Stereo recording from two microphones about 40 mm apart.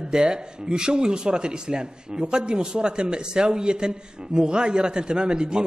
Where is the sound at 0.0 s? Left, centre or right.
Centre.